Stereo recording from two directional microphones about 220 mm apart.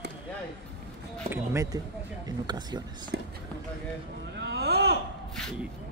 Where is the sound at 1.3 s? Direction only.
10° right (ahead or behind).